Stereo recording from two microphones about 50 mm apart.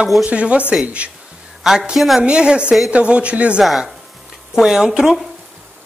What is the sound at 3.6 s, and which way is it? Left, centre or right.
A woman's voice, centre.